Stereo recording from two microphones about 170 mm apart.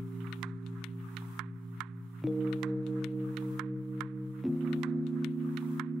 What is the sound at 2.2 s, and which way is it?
Music, centre (ahead or behind).